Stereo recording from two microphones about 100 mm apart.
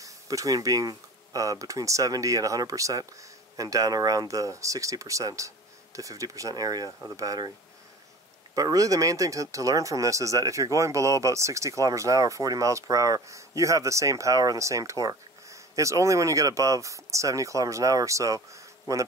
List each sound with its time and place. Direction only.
0.0 s speech: 35° right (ahead or behind)
8.5 s speech: 35° right (ahead or behind)